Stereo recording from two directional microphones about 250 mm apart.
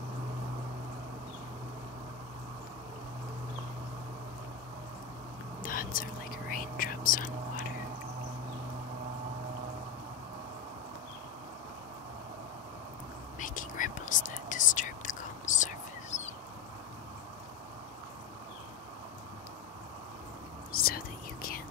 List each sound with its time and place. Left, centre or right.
5.6 s whispering: left
13.4 s whispering: left
20.7 s whispering: left